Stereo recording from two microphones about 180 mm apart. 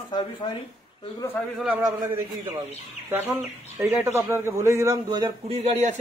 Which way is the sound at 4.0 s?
15° right (ahead or behind).